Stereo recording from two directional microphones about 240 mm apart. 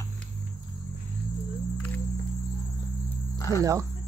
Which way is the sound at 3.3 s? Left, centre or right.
Centre.